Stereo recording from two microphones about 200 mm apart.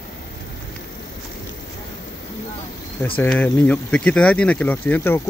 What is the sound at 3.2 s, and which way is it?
Speech, 10° left (ahead or behind).